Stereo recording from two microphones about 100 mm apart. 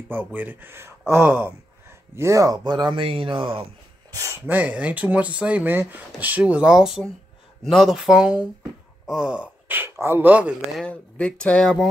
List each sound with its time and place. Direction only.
0.1 s speech: 15° right (ahead or behind); by 3.6 s 60° right (ahead or behind)
4.1 s speech: 35° right (ahead or behind)
4.5 s speech: 15° right (ahead or behind)
10.9 s speech: 10° left (ahead or behind)